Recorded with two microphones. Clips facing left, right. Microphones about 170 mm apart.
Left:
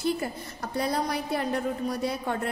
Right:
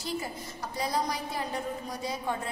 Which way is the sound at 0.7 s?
60° left (ahead or behind).